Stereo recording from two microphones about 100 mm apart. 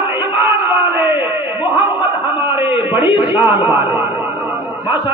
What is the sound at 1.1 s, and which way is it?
A man's voice, 50° left (ahead or behind).